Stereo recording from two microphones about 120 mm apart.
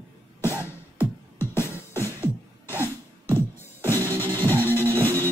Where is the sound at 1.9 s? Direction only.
20° left (ahead or behind).